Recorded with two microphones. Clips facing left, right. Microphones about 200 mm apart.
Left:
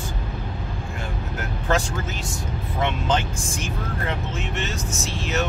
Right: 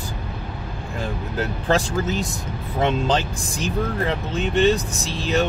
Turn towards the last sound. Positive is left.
turn(degrees=-35)  # may be behind; listen again after turning